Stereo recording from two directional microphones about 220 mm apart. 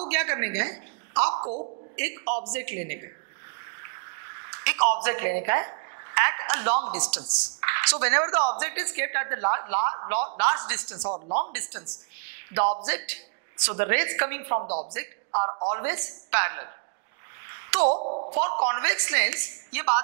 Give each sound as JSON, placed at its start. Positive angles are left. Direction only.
{"t": 0.1, "sound": "a sound", "side_deg": -15}
{"t": 1.1, "sound": "a sound", "side_deg": -25}
{"t": 2.0, "sound": "a woman's voice", "side_deg": -15}
{"t": 4.5, "sound": "a woman's voice", "side_deg": -15}
{"t": 12.5, "sound": "a woman's voice", "side_deg": -10}
{"t": 14.6, "sound": "speech", "side_deg": -30}
{"t": 15.8, "sound": "a woman's voice", "side_deg": -15}
{"t": 17.7, "sound": "speech", "side_deg": -30}
{"t": 18.7, "sound": "a woman's voice", "side_deg": -15}